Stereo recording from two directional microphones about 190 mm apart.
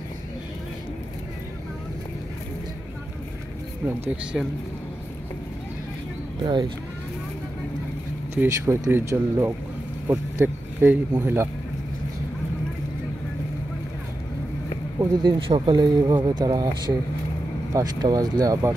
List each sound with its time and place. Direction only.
4.0 s speech: 5° right (ahead or behind)
6.4 s speech: 25° right (ahead or behind)
8.4 s speech: 15° right (ahead or behind)
15.2 s speech: 25° right (ahead or behind)